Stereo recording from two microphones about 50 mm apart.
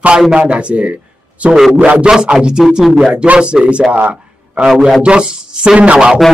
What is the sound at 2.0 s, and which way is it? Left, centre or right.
Speech, centre.